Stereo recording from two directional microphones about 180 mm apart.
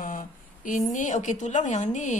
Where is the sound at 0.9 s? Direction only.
45° left (ahead or behind).